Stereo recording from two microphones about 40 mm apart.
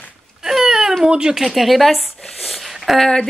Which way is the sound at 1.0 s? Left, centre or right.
Centre.